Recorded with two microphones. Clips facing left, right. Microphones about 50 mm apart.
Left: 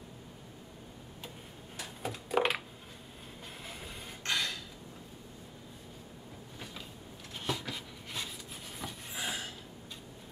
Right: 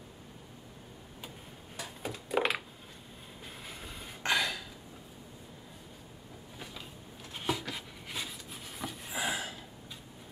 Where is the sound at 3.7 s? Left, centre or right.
Centre.